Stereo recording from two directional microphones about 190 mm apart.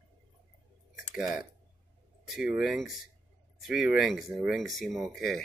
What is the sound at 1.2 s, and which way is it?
Speech, 5° right (ahead or behind).